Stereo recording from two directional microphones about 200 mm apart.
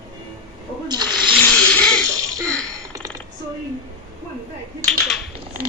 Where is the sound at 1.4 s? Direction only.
5° left (ahead or behind).